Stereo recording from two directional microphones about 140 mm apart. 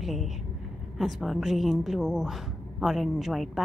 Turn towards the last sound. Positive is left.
turn(degrees=0)  # may be behind; listen again after turning